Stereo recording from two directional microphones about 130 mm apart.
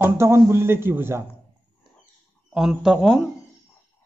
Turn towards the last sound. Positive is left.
turn(degrees=0)  # may be behind; listen again after turning